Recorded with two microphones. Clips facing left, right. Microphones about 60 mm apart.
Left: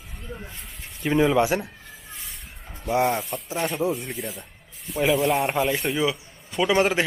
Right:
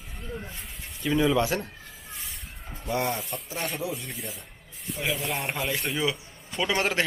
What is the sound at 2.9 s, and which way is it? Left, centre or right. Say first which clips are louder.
Speech: left 6 dB; centre.